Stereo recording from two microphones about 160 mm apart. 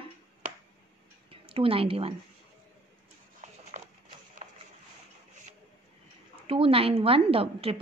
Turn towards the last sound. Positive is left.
turn(degrees=-35)  # may be behind; listen again after turning